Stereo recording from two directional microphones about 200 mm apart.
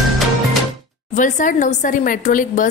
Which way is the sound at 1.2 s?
40° left (ahead or behind).